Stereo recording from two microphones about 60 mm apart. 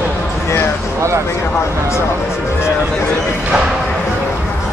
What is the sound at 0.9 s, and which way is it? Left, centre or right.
Speech, right.